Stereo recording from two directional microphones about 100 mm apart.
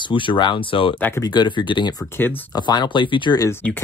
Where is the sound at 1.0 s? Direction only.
20° left (ahead or behind).